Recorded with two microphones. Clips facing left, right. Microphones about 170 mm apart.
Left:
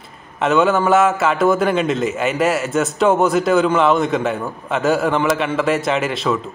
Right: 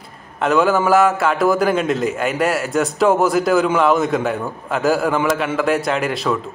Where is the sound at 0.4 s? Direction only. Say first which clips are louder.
Even; centre (ahead or behind).